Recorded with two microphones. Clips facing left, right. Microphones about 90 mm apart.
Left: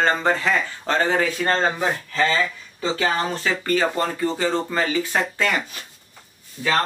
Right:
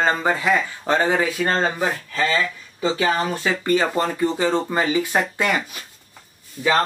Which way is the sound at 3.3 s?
20° right (ahead or behind).